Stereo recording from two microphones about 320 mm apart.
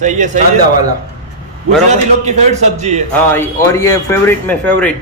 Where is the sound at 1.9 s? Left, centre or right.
Right.